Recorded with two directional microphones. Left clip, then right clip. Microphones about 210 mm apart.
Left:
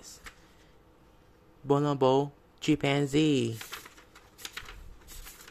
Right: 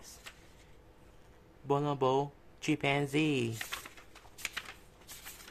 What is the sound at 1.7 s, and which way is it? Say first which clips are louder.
Speech: left 5 dB; 25° left (ahead or behind).